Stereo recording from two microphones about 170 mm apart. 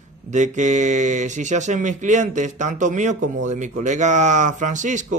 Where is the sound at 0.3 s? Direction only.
45° right (ahead or behind).